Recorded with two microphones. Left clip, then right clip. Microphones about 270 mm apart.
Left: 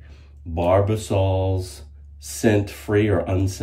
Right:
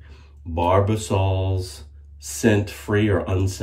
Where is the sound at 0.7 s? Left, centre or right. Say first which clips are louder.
Left 1 dB; centre.